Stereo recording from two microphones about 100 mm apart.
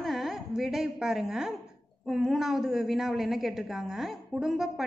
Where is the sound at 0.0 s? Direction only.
Centre (ahead or behind).